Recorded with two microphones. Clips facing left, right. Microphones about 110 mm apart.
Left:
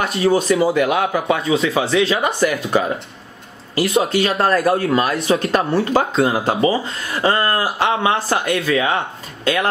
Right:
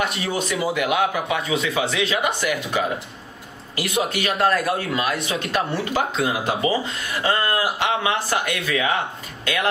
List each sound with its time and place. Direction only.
0.0 s speech: 30° left (ahead or behind)